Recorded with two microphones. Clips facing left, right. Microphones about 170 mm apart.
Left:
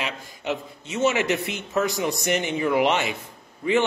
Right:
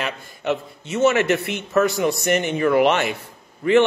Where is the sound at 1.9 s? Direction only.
15° left (ahead or behind).